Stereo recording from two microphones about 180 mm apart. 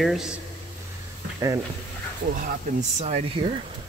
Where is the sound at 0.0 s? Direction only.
Centre (ahead or behind).